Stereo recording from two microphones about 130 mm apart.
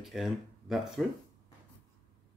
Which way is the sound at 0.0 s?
Centre (ahead or behind).